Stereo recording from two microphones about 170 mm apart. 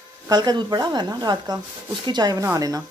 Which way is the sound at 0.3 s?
25° right (ahead or behind).